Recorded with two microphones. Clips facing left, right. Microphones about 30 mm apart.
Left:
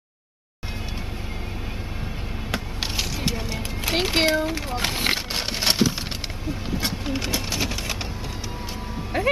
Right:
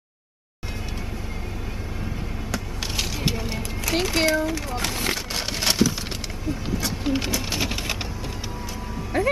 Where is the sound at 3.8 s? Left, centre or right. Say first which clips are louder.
Left 1 dB; left.